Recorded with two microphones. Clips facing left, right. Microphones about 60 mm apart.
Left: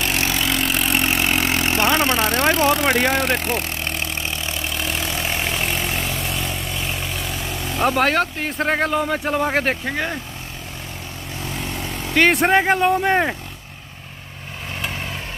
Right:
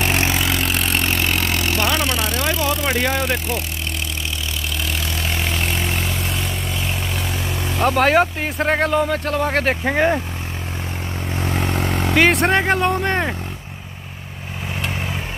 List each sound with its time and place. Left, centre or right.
0.0 s vehicle: right
0.4 s vehicle: centre; by 2.9 s left
2.9 s speech: centre
3.2 s speech: left
7.7 s speech: centre
9.8 s speech: right
11.3 s vehicle: right
12.2 s speech: centre